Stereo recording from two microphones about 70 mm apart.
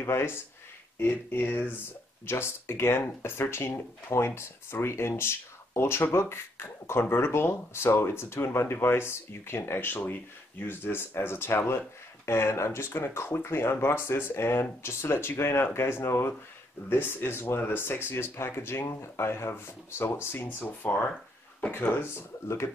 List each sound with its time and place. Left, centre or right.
0.0 s speech: left